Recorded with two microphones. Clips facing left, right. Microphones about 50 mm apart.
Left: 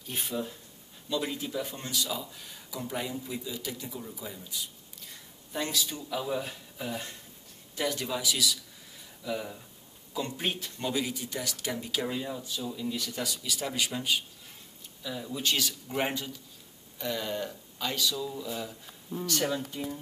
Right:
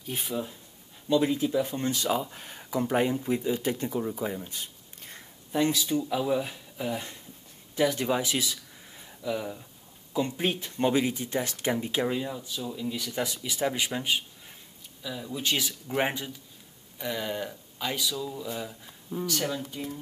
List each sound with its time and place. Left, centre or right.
0.0 s speech: centre
1.0 s speech: right
1.6 s speech: right
5.5 s speech: right
5.9 s speech: centre
8.0 s speech: right
9.2 s speech: centre
10.8 s speech: right
12.1 s speech: centre
13.1 s speech: right
15.0 s speech: centre